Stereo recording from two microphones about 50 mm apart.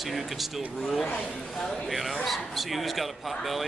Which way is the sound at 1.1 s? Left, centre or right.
Left.